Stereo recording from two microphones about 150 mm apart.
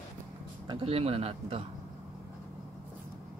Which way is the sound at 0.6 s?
40° right (ahead or behind).